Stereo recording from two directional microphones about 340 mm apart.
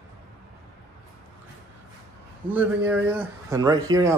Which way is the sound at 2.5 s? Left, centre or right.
Centre.